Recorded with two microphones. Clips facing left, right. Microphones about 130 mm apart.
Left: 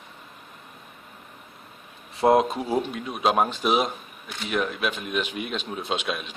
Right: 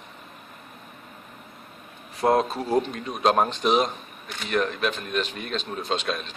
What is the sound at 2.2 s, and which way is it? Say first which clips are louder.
Speech: left 2 dB; 15° left (ahead or behind).